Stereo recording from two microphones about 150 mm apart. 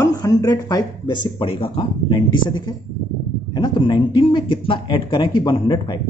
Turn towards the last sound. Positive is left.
turn(degrees=30)  # may be behind; listen again after turning